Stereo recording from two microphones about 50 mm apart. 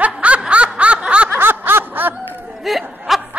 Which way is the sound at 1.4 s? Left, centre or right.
Right.